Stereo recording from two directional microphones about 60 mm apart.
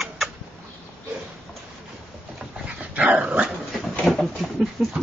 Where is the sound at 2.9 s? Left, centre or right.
Right.